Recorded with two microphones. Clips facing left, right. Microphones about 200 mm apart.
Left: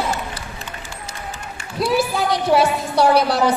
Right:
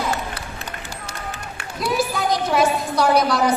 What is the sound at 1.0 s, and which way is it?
Run, 60° right (ahead or behind).